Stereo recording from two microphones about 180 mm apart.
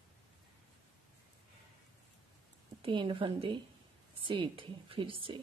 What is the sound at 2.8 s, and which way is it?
A woman's voice, 30° right (ahead or behind).